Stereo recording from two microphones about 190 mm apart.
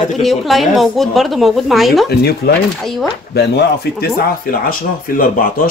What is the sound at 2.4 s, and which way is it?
Speech, 55° left (ahead or behind).